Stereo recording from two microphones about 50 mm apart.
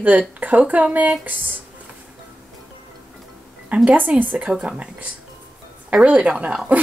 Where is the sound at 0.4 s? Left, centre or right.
Right.